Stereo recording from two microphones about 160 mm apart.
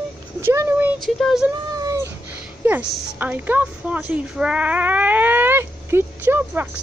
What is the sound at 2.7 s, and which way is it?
A woman's voice, 10° right (ahead or behind).